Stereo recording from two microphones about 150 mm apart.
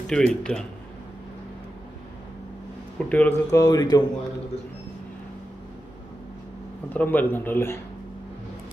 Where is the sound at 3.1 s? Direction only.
10° left (ahead or behind).